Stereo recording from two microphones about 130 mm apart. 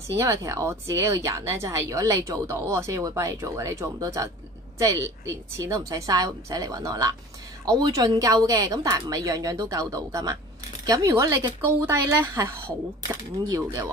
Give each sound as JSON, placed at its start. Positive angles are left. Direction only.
{"t": 0.2, "sound": "speech", "side_deg": -25}
{"t": 11.8, "sound": "speech", "side_deg": -20}